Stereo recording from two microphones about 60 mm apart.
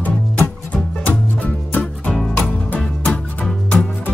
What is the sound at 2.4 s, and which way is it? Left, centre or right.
Music, left.